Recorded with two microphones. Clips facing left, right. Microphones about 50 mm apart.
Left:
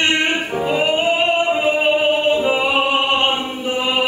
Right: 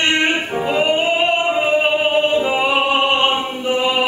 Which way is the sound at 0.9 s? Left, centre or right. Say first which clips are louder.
Even; centre.